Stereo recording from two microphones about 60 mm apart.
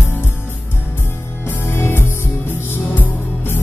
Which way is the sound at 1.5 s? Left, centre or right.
Left.